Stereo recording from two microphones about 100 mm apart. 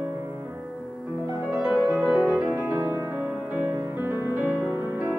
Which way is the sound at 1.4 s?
15° right (ahead or behind).